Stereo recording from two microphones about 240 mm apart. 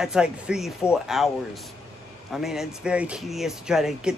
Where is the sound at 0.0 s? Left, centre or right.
Centre.